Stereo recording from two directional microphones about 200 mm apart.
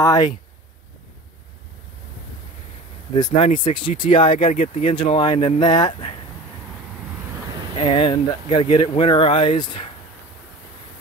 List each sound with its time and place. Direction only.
0.0 s speech: 20° left (ahead or behind)
3.2 s speech: 25° left (ahead or behind)
7.7 s speech: 25° left (ahead or behind)